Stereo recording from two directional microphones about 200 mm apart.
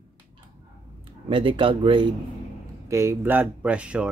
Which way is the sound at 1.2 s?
25° right (ahead or behind).